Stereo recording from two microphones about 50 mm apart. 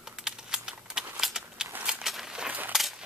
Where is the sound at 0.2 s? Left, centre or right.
Centre.